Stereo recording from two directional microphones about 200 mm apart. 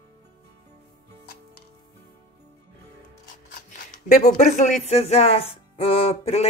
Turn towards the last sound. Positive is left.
turn(degrees=30)  # may be behind; listen again after turning